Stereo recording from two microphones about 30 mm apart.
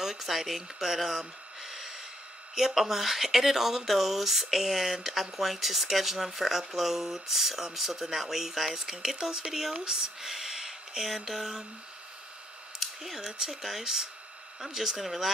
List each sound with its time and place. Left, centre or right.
0.0 s speech: centre
1.6 s snort: centre
2.5 s speech: centre
12.7 s a sound: centre
13.5 s speech: centre